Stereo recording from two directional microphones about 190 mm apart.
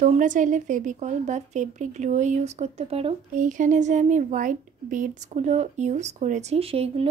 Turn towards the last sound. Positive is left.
turn(degrees=-30)  # may be behind; listen again after turning